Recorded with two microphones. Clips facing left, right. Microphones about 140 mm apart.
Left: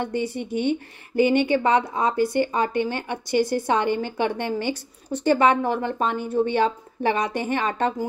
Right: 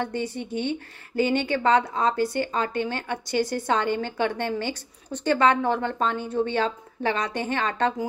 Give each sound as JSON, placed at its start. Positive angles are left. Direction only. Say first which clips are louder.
{"t": 0.0, "sound": "a woman's voice", "louder": "left 2 dB", "side_deg": 10}